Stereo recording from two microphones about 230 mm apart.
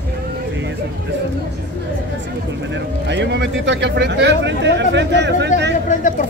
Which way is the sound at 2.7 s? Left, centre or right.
Right.